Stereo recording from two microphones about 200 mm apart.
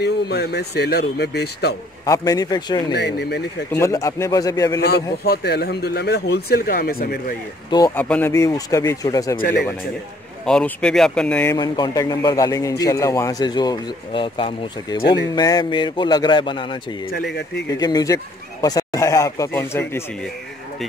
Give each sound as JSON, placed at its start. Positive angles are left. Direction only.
{"t": 0.0, "sound": "speech", "side_deg": 55}
{"t": 2.0, "sound": "a man's voice", "side_deg": 20}
{"t": 2.9, "sound": "speech", "side_deg": 55}
{"t": 3.8, "sound": "speech", "side_deg": 15}
{"t": 5.2, "sound": "speech", "side_deg": 55}
{"t": 7.7, "sound": "speech", "side_deg": 15}
{"t": 10.4, "sound": "speech", "side_deg": 5}
{"t": 11.5, "sound": "a man's voice", "side_deg": 20}
{"t": 17.1, "sound": "speech", "side_deg": 55}
{"t": 17.6, "sound": "speech", "side_deg": 20}